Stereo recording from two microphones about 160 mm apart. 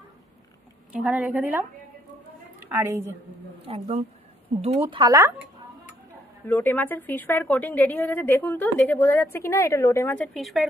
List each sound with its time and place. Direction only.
0.9 s a woman's voice: 10° right (ahead or behind)
3.7 s speech: 40° right (ahead or behind)
6.4 s a woman's voice: 10° left (ahead or behind)